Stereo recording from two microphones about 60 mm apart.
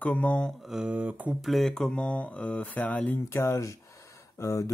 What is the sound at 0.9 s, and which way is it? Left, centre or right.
Speech, right.